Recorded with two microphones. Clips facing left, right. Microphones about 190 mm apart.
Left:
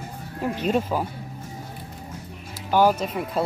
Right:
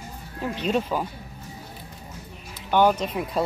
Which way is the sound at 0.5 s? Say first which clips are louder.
Left 1 dB; 10° left (ahead or behind).